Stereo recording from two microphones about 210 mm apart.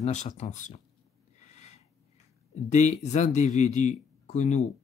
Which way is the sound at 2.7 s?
35° left (ahead or behind).